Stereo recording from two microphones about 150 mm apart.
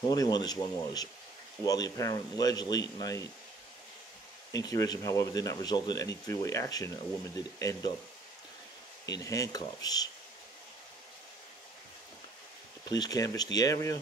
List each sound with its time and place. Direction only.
0.1 s a man's voice: 25° left (ahead or behind)
4.5 s a man's voice: 25° left (ahead or behind)
9.0 s a man's voice: 25° left (ahead or behind)
12.8 s a man's voice: 25° left (ahead or behind)